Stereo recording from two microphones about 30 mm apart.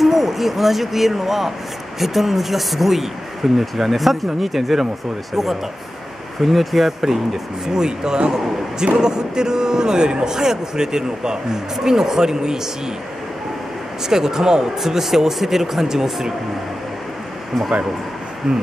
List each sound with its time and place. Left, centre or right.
0.0 s speech: centre
7.6 s speech: right
14.0 s speech: centre